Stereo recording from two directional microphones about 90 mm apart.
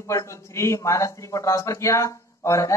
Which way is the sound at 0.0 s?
35° left (ahead or behind).